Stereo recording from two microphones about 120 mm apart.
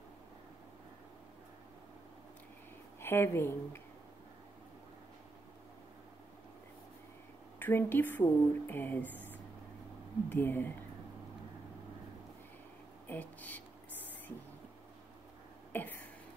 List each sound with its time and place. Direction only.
3.0 s a woman's voice: 20° left (ahead or behind)
7.5 s speech: 15° left (ahead or behind)
10.3 s speech: 15° left (ahead or behind)
13.0 s speech: 15° left (ahead or behind)
15.7 s a sound: 15° left (ahead or behind)